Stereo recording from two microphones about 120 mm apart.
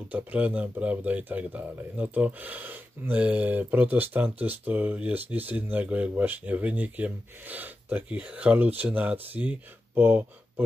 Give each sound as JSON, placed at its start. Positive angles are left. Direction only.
{"t": 0.1, "sound": "speech", "side_deg": -10}